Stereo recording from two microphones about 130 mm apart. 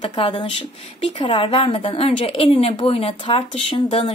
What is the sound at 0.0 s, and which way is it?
A woman's voice, 40° left (ahead or behind).